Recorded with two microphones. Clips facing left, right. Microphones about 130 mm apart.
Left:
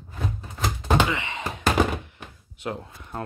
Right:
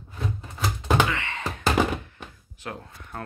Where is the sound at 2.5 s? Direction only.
20° left (ahead or behind).